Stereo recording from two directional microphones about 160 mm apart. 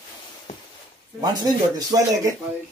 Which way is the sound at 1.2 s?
25° right (ahead or behind).